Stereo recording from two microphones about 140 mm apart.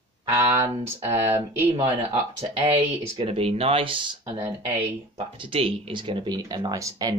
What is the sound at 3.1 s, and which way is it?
Speech, 40° right (ahead or behind).